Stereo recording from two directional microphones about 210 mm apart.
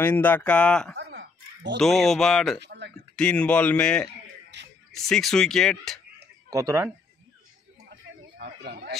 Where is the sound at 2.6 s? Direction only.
55° right (ahead or behind).